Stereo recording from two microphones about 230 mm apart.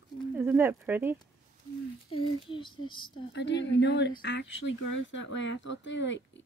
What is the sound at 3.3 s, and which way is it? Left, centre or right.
Speech, left.